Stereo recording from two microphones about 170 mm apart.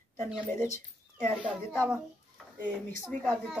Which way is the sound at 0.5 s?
15° left (ahead or behind).